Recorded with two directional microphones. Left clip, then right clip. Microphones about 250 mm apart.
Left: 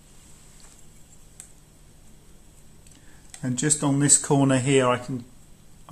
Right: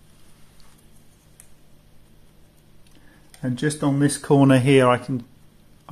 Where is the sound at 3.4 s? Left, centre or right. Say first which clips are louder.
Right 1 dB; centre.